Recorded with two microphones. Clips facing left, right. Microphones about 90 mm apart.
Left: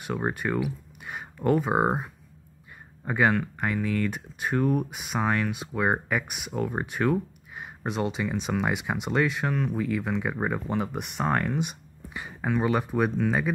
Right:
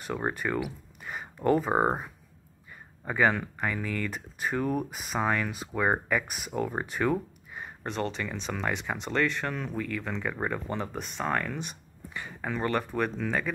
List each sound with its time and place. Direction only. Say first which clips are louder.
0.0 s speech: left 2 dB; 5° left (ahead or behind)
3.1 s speech: left 2 dB; 5° left (ahead or behind)
11.3 s speech: left 4 dB; 25° left (ahead or behind)
11.6 s speech: left 7 dB; 15° left (ahead or behind)